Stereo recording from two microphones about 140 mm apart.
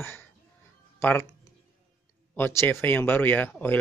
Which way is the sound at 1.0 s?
15° left (ahead or behind).